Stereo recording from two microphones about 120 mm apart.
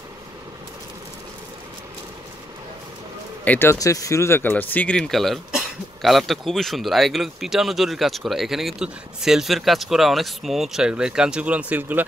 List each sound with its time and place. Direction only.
3.4 s speech: 20° left (ahead or behind)
3.7 s speech: 30° left (ahead or behind); by 12.0 s 15° right (ahead or behind)